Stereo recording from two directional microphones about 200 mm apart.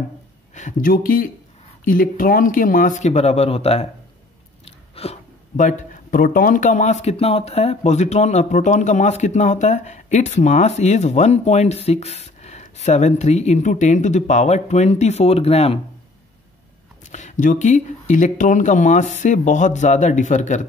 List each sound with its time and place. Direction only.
0.6 s speech: 40° left (ahead or behind)
17.1 s speech: 40° left (ahead or behind)